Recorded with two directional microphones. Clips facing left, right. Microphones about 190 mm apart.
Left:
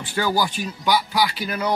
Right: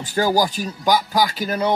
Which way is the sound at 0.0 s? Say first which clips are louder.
Right 4 dB; 40° right (ahead or behind).